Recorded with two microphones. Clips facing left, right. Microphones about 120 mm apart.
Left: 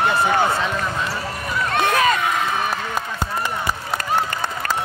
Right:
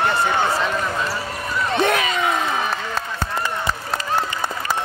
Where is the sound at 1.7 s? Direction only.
50° left (ahead or behind).